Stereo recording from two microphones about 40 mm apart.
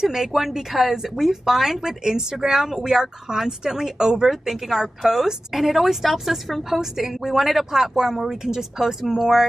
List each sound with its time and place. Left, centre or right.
0.0 s a woman's voice: centre